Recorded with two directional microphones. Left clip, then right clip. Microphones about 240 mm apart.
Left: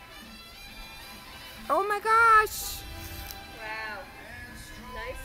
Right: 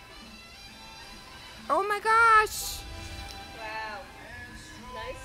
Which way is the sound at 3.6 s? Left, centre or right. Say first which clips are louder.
Left 1 dB; centre.